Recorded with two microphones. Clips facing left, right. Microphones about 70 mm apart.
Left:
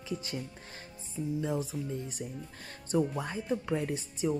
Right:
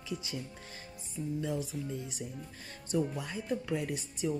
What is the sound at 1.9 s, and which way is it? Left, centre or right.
Speech, left.